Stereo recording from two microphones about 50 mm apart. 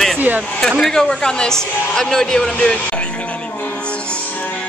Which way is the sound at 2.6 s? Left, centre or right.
Centre.